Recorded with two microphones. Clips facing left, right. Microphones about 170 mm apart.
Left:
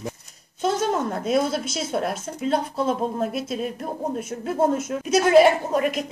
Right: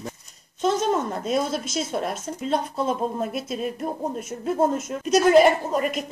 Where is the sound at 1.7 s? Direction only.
Centre (ahead or behind).